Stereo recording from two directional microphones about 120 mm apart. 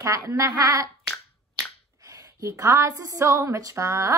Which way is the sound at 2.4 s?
25° right (ahead or behind).